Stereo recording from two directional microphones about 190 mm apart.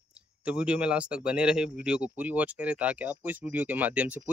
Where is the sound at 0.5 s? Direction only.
5° right (ahead or behind).